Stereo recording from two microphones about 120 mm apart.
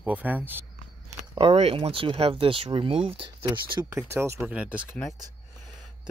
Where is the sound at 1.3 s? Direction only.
55° right (ahead or behind).